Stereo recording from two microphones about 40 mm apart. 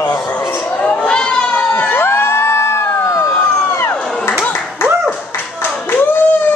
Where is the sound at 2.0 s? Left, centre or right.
Left.